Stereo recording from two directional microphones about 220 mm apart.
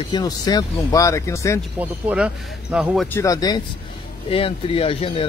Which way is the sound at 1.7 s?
5° right (ahead or behind).